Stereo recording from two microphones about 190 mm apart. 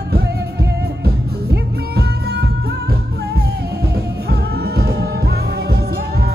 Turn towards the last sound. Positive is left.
turn(degrees=-55)  # may be behind; listen again after turning